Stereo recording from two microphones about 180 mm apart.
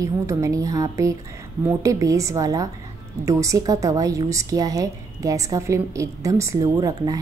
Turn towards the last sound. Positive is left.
turn(degrees=-20)  # may be behind; listen again after turning